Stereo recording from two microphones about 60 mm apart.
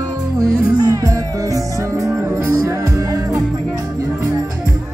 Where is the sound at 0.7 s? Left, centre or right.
Right.